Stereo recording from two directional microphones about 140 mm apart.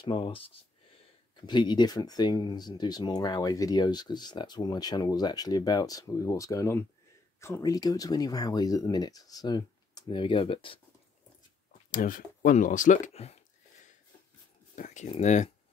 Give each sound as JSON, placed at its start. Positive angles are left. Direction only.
{"t": 0.0, "sound": "speech", "side_deg": 40}
{"t": 11.9, "sound": "speech", "side_deg": 70}
{"t": 14.8, "sound": "speech", "side_deg": 60}